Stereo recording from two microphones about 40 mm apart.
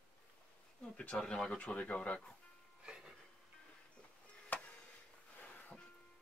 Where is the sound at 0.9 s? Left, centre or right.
Left.